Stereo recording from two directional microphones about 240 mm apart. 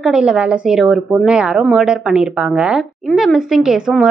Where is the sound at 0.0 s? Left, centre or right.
Centre.